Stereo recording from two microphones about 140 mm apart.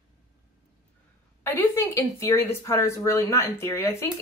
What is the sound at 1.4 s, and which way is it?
A woman's voice, 15° left (ahead or behind).